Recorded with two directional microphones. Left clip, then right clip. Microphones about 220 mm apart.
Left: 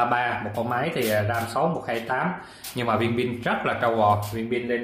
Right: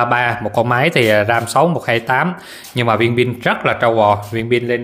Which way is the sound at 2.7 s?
35° right (ahead or behind).